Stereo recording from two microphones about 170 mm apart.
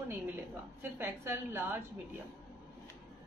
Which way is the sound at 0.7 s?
15° right (ahead or behind).